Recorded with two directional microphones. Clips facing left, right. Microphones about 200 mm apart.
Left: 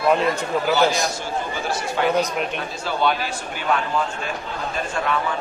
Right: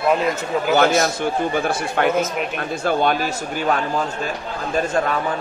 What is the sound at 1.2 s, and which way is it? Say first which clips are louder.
A man's voice: right 6 dB; 55° right (ahead or behind).